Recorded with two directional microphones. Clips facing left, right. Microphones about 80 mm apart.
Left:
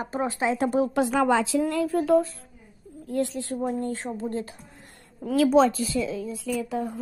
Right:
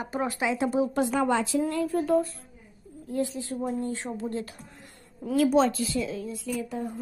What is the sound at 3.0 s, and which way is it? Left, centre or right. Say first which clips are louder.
Speech: left 2 dB; left.